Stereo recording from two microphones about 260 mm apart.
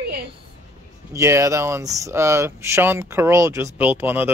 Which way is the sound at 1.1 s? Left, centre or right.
Centre.